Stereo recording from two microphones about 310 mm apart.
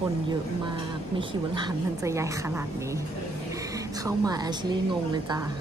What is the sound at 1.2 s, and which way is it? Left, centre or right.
A woman's voice, centre.